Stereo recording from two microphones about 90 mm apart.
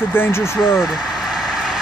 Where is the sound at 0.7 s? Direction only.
Centre (ahead or behind).